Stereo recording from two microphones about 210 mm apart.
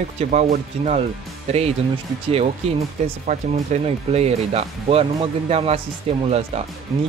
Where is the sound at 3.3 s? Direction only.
30° right (ahead or behind).